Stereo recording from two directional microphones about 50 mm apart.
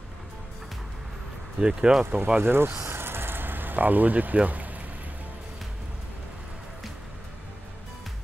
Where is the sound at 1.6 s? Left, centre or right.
Centre.